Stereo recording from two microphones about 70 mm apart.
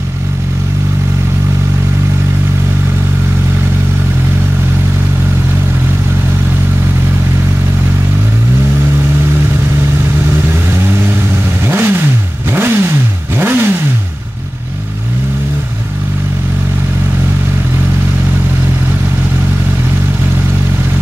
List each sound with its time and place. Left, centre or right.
11.6 s vehicle: right